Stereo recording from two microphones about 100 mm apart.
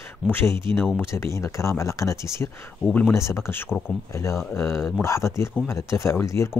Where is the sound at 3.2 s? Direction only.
30° left (ahead or behind).